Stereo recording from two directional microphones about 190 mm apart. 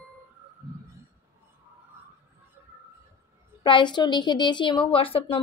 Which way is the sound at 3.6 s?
25° left (ahead or behind).